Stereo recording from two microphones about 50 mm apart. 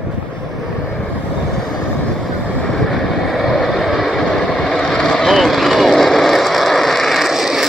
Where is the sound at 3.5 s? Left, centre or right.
Centre.